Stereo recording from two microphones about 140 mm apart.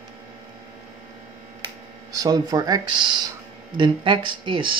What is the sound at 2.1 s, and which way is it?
Speech, 25° right (ahead or behind).